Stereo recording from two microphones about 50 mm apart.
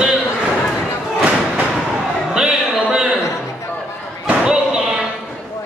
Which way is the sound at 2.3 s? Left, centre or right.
Centre.